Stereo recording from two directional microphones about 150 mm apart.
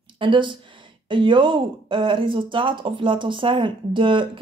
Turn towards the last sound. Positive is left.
turn(degrees=-35)  # may be behind; listen again after turning